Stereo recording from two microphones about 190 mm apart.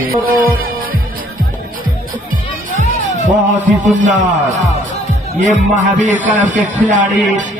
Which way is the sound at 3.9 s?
40° right (ahead or behind).